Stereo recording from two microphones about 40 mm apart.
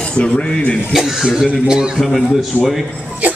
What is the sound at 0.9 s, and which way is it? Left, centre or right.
Speech, centre.